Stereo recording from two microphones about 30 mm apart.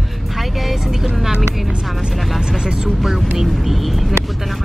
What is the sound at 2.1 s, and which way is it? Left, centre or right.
Vehicle, centre.